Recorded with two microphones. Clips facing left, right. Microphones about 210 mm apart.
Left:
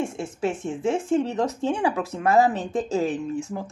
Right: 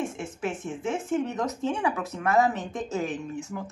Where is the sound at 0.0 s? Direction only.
30° left (ahead or behind).